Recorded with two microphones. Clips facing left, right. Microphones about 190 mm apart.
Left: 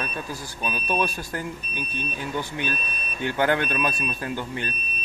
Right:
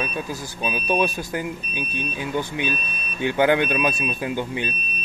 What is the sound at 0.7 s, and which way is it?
A man's voice, 20° right (ahead or behind).